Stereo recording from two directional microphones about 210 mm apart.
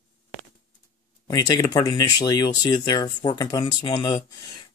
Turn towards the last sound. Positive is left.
turn(degrees=20)  # may be behind; listen again after turning